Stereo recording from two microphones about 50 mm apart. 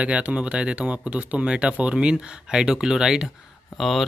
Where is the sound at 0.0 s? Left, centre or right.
Right.